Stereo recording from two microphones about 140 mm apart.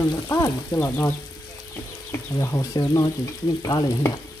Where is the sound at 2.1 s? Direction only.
20° left (ahead or behind).